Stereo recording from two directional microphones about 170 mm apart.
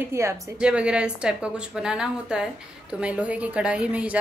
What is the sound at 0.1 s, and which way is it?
Speech, 15° right (ahead or behind).